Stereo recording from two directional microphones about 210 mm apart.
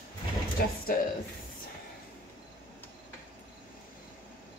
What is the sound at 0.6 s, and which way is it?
Speech, 45° left (ahead or behind).